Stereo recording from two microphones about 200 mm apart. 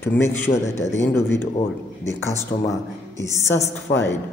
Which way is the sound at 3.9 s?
50° left (ahead or behind).